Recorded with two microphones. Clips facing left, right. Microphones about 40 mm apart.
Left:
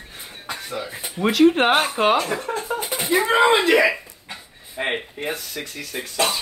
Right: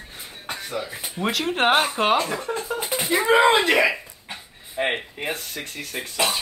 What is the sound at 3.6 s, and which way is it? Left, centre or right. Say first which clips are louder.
Speech: left 2 dB; right.